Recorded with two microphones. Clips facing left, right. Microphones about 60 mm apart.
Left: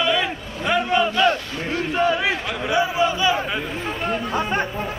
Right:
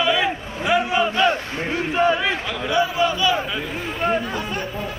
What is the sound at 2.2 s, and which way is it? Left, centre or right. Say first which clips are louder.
Speech: even; centre.